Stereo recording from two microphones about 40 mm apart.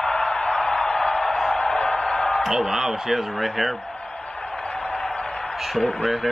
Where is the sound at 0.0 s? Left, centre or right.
Centre.